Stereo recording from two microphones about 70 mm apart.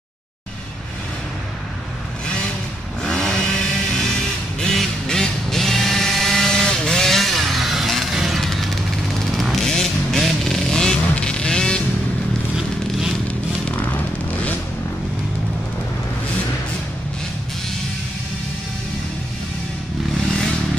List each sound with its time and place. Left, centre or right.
3.0 s vehicle: centre
4.6 s a sound: centre
8.4 s music: centre
9.4 s vehicle: centre
12.5 s a sound: centre
13.7 s vehicle: left